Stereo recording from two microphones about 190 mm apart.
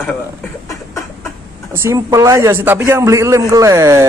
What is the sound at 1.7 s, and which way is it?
A man's voice, 15° right (ahead or behind).